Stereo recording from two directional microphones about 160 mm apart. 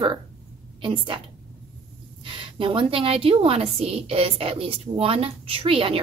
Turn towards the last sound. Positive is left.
turn(degrees=-35)  # may be behind; listen again after turning